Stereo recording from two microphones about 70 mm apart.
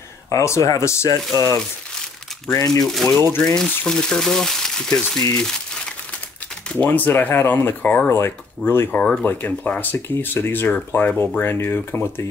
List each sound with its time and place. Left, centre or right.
0.3 s speech: left
2.5 s speech: left
3.0 s speech: left
3.5 s speech: centre
6.9 s speech: left
8.1 s speech: left
8.9 s speech: centre
9.2 s speech: left